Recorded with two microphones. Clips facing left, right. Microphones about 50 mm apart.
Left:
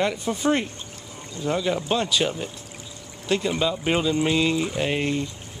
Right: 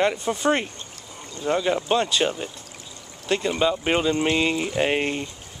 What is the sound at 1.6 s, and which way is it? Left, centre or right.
Speech, centre.